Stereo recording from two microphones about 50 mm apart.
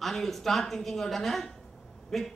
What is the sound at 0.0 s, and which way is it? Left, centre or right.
A man's voice, centre.